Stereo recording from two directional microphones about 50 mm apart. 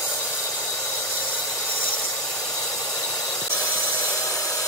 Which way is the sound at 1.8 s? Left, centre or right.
Left.